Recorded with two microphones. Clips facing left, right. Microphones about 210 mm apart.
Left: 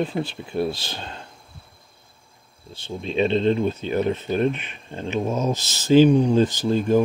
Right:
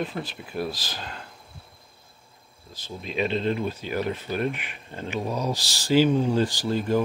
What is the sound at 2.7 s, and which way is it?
Speech, 30° left (ahead or behind).